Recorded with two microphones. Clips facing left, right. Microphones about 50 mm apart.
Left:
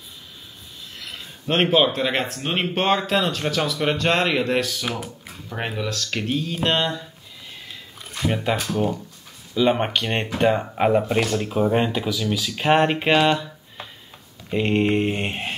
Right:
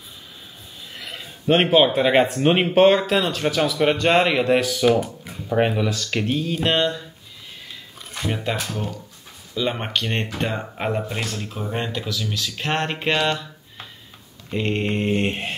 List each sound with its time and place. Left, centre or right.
0.9 s speech: centre
5.0 s a sound: centre
5.5 s speech: centre
7.6 s a sound: centre
8.6 s speech: centre
11.0 s speech: centre